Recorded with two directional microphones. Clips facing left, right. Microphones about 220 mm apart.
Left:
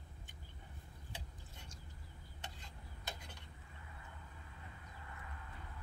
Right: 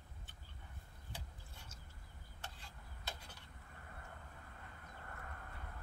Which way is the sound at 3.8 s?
50° right (ahead or behind).